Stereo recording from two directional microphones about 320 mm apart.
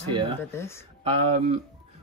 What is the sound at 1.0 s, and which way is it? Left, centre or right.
Speech, centre.